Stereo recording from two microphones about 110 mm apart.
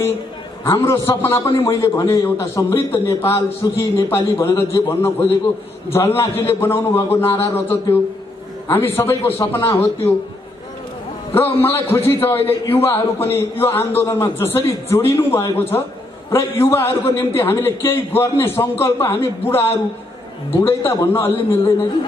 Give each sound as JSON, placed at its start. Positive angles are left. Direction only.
{"t": 0.7, "sound": "a man's voice", "side_deg": 25}
{"t": 11.3, "sound": "a man's voice", "side_deg": 20}